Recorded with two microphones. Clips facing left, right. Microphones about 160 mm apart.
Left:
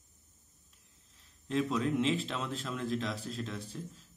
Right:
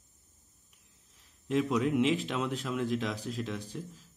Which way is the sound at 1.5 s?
10° right (ahead or behind).